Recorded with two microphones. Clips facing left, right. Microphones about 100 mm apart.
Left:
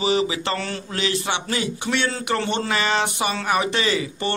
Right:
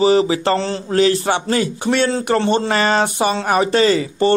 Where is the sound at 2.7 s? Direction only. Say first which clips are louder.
Right 6 dB; 40° right (ahead or behind).